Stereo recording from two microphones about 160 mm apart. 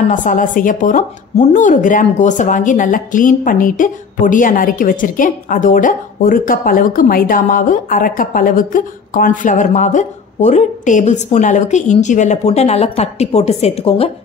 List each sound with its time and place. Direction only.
0.1 s speech: 55° left (ahead or behind); by 14.1 s 35° left (ahead or behind)